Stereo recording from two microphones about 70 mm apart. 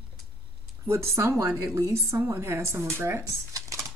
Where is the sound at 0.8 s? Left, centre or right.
Right.